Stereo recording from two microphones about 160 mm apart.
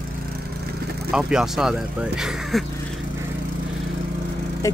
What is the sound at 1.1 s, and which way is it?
Speech, 5° right (ahead or behind).